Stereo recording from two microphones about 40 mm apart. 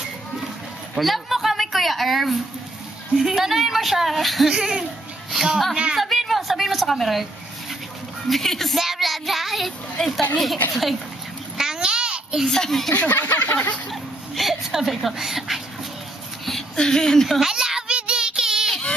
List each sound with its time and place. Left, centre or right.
0.9 s a sound: centre
3.2 s speech: centre
4.5 s speech: centre
8.3 s speech: centre
11.5 s babbling: centre
12.4 s speech: centre
12.9 s speech: left
13.5 s a sound: left
14.3 s speech: centre
16.4 s speech: centre
17.4 s a sound: centre
17.8 s child singing: right